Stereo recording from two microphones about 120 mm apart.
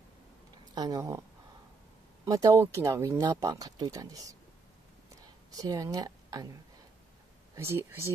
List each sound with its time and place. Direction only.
0.7 s speech: 30° right (ahead or behind)
2.2 s speech: 30° right (ahead or behind)
5.1 s a sound: 30° right (ahead or behind)
7.5 s speech: 20° right (ahead or behind)